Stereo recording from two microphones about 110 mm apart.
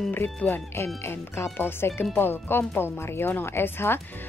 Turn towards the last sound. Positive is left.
turn(degrees=20)  # may be behind; listen again after turning